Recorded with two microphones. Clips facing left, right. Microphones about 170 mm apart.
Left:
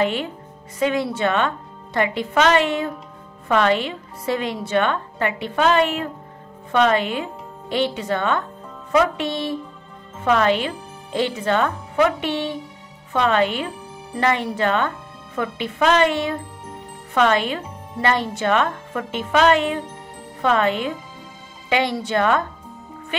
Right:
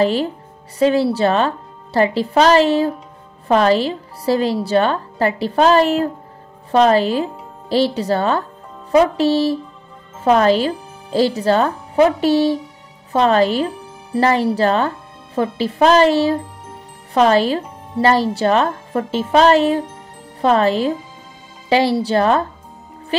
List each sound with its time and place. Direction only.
0.0 s speech: 35° right (ahead or behind)